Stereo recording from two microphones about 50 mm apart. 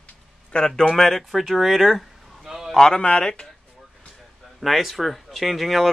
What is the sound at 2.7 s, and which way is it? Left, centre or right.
Speech, centre.